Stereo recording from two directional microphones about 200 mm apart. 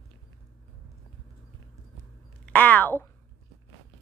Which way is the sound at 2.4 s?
10° left (ahead or behind).